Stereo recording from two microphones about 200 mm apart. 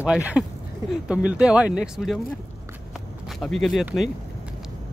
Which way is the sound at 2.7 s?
Centre (ahead or behind).